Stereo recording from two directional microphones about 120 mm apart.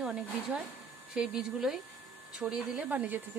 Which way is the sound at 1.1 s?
5° right (ahead or behind).